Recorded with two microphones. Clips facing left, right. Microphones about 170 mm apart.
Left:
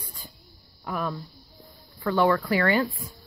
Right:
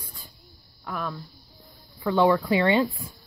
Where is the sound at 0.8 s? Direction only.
Centre (ahead or behind).